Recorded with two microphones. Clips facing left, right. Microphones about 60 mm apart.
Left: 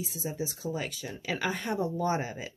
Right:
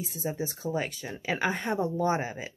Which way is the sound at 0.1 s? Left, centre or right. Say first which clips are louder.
Right 2 dB; right.